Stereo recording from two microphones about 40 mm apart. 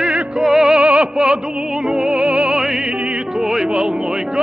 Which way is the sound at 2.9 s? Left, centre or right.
Right.